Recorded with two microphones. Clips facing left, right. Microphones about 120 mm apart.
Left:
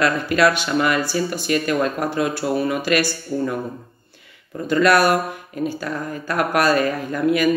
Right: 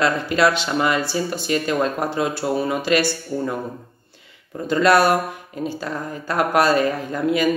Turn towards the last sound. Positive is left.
turn(degrees=-25)  # may be behind; listen again after turning